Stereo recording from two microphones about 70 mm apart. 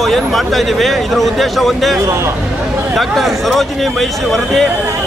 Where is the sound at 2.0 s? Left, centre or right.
Right.